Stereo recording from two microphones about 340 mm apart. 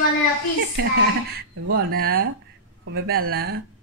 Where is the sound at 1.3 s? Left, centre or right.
Right.